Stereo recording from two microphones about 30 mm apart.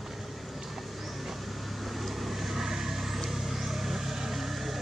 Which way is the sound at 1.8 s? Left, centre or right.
Centre.